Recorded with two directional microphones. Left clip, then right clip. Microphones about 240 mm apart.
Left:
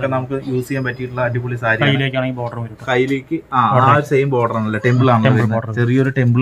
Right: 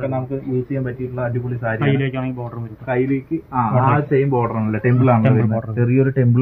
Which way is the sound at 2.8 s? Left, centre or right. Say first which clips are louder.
Left 3 dB; centre.